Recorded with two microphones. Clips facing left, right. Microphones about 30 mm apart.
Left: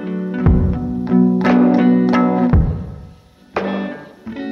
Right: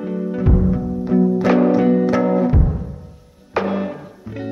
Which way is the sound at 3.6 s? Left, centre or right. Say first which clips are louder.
Left 1 dB; left.